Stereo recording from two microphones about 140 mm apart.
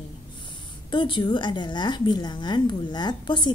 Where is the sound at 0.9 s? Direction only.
35° left (ahead or behind).